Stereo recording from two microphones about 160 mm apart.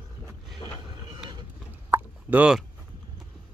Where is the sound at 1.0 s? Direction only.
25° right (ahead or behind).